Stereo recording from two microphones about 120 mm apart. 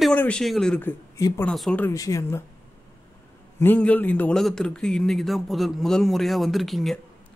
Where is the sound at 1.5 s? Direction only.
Centre (ahead or behind).